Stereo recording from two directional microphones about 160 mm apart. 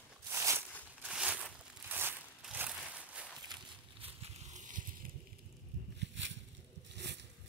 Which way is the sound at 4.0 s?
40° right (ahead or behind).